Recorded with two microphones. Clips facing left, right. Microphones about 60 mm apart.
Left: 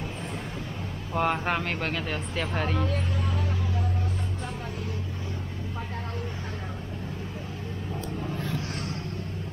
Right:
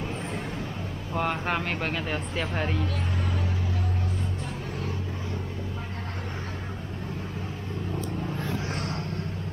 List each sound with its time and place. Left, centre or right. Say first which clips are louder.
1.1 s speech: left 2 dB; centre
8.7 s vehicle: right 2 dB; right